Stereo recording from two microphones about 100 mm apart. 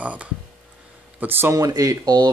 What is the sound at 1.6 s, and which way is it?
Speech, 40° right (ahead or behind).